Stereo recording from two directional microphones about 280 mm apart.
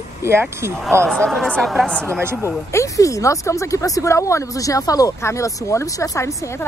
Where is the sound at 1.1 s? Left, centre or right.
Centre.